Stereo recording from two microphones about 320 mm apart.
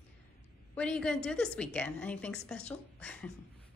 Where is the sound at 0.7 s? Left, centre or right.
Centre.